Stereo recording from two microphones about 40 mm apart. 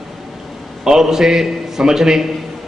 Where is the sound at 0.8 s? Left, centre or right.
Centre.